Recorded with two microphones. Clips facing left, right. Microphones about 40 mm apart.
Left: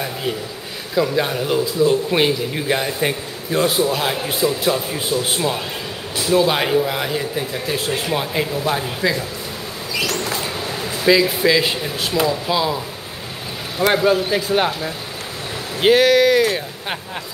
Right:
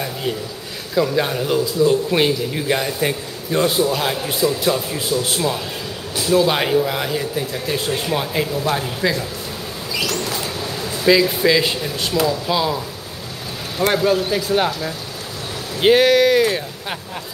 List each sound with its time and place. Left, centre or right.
0.9 s speech: centre
6.4 s speech: centre
10.0 s a sound: left
10.6 s a sound: centre
11.1 s speech: centre
12.4 s speech: centre
13.9 s speech: centre
15.8 s speech: centre